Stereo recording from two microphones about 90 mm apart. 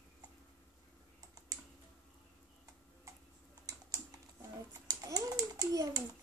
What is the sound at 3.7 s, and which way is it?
Typing, 50° right (ahead or behind).